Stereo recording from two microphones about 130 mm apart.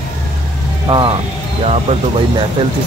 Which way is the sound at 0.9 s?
40° right (ahead or behind).